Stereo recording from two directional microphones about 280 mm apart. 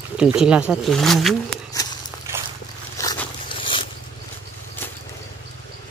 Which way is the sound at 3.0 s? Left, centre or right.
Centre.